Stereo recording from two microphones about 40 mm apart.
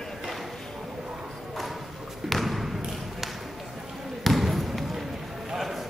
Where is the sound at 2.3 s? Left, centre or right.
Centre.